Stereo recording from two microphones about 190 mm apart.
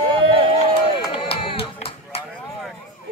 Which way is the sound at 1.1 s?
30° left (ahead or behind).